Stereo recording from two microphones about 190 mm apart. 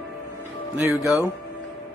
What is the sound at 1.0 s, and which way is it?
Speech, 15° left (ahead or behind).